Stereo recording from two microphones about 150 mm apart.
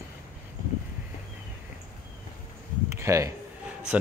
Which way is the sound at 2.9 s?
20° right (ahead or behind).